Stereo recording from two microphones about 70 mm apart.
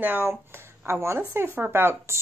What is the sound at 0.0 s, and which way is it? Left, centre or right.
A woman's voice, right.